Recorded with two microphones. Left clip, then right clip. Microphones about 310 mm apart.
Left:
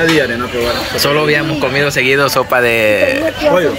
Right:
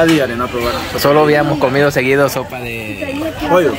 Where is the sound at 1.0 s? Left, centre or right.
Centre.